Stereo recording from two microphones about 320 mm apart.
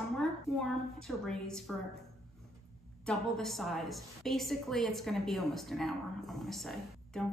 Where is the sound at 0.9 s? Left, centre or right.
Centre.